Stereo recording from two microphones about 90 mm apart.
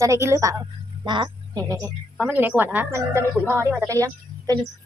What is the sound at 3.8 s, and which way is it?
Speech, 40° right (ahead or behind).